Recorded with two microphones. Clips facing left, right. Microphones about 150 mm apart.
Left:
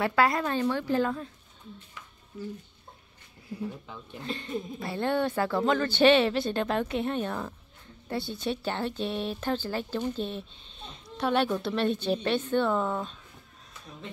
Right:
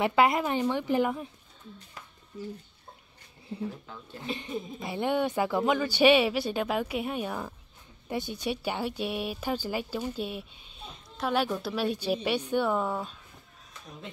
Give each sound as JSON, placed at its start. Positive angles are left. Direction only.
{"t": 0.0, "sound": "speech", "side_deg": -20}
{"t": 3.5, "sound": "speech", "side_deg": -25}
{"t": 3.8, "sound": "speech", "side_deg": 10}
{"t": 4.2, "sound": "speech", "side_deg": -15}